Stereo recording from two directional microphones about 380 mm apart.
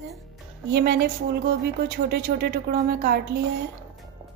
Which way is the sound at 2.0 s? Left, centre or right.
Right.